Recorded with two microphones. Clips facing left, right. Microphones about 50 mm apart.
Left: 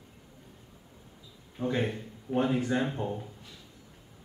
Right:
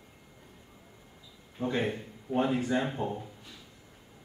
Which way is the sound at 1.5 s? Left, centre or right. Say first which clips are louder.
Even; centre.